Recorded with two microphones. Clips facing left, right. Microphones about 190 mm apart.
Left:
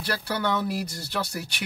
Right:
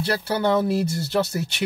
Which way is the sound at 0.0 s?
25° right (ahead or behind).